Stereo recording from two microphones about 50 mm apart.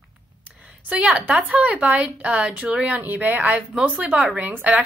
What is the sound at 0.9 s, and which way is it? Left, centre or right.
Speech, right.